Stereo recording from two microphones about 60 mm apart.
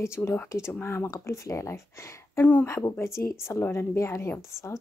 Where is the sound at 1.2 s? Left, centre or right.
Left.